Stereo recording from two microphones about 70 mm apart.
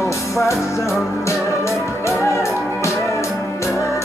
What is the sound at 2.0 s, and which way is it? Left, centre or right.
Music, left.